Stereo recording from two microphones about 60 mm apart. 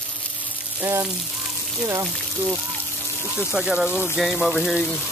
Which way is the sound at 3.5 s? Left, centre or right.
Centre.